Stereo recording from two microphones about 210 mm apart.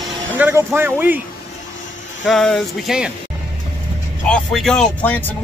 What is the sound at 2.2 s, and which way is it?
Speech, centre (ahead or behind).